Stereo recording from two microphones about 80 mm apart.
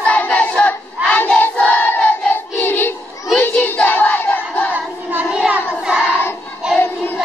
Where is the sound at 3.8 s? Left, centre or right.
Left.